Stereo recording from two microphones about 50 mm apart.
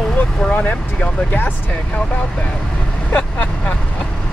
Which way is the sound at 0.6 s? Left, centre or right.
Left.